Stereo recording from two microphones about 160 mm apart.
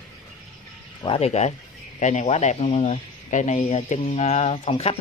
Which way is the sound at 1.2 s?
45° left (ahead or behind).